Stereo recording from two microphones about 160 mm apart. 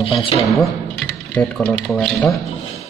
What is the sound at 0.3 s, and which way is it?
Speech, 35° left (ahead or behind).